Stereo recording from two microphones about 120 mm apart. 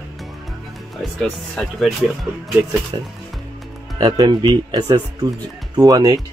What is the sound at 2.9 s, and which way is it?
Speech, 35° right (ahead or behind).